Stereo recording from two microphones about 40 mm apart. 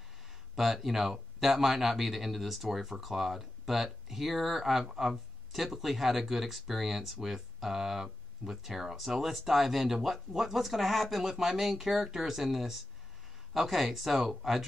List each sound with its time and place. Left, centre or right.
0.6 s speech: centre